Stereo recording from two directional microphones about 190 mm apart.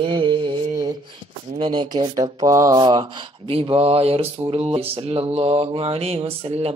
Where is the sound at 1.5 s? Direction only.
25° right (ahead or behind).